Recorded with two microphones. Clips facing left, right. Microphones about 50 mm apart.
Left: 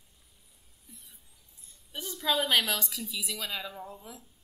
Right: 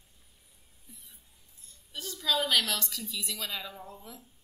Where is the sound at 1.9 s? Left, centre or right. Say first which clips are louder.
Left 1 dB; centre.